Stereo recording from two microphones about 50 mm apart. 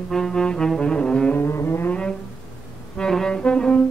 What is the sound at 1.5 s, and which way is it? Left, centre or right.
Music, left.